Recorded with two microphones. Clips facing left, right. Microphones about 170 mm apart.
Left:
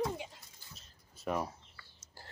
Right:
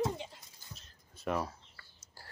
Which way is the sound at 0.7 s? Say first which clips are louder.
Right 6 dB; centre (ahead or behind).